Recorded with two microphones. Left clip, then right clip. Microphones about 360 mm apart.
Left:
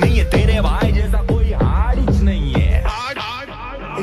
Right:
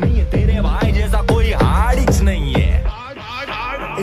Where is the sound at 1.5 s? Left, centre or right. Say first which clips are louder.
Right 5 dB; right.